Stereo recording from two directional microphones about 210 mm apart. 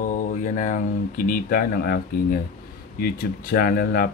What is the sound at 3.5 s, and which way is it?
Speech, 45° left (ahead or behind).